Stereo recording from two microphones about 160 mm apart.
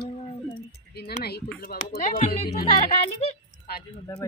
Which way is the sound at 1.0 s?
85° left.